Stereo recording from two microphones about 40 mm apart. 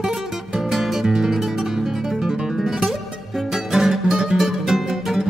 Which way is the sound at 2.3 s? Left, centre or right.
Centre.